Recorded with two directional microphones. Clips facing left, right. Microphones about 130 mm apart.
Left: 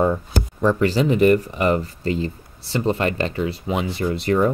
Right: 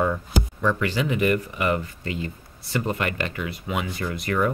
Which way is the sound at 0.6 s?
35° left (ahead or behind).